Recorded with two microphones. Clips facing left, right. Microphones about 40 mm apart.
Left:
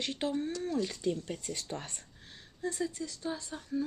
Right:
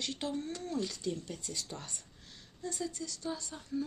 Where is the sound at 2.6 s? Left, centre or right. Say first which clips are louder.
Left 4 dB; centre.